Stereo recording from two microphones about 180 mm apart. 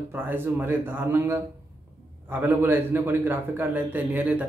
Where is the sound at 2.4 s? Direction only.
10° right (ahead or behind).